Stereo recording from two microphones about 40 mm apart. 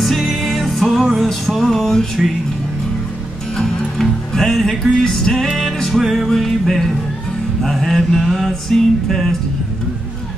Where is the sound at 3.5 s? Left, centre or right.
Centre.